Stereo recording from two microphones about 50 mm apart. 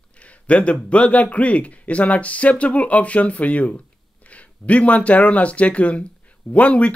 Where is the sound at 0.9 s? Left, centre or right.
Left.